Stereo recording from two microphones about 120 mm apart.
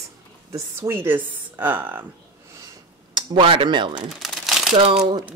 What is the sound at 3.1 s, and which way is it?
Speech, 45° right (ahead or behind).